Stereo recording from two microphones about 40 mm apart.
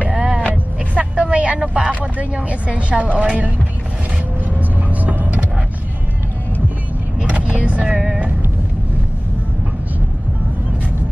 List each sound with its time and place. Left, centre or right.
0.0 s vehicle: right
2.3 s a woman's voice: right
4.6 s vehicle: right
7.2 s vehicle: right
7.9 s music: centre